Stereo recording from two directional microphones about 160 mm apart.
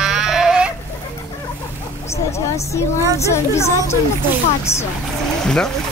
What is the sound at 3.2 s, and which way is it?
Speech, 15° left (ahead or behind).